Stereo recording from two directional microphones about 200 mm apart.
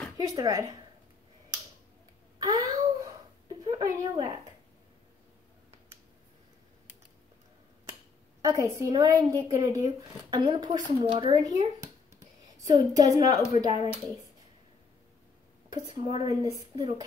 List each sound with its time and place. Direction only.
0.2 s speech: 15° right (ahead or behind)
2.3 s a sound: 15° right (ahead or behind)
8.5 s speech: 15° right (ahead or behind)
13.7 s speech: 30° left (ahead or behind)
16.2 s speech: 20° right (ahead or behind)